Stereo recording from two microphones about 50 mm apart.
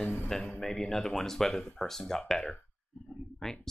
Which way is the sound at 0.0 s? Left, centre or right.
Left.